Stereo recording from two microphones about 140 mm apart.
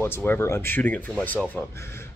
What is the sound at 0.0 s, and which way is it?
A man's voice, 15° left (ahead or behind).